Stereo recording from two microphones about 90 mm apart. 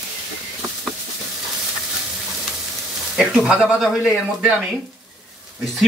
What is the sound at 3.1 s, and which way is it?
Speech, 5° right (ahead or behind).